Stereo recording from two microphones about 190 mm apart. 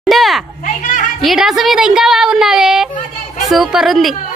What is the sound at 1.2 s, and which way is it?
A woman's voice, centre (ahead or behind).